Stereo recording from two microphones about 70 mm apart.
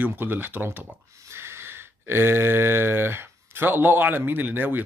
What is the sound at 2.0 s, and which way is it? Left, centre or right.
Speech, right.